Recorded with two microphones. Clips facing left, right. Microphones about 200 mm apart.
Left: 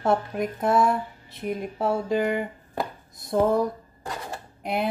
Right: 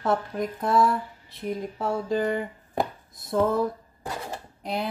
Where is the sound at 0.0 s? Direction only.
25° left (ahead or behind).